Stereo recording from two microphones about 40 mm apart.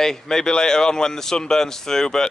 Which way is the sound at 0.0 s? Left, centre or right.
Centre.